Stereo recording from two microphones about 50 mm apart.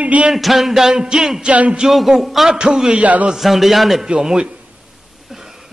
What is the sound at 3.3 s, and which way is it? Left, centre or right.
Speech, centre.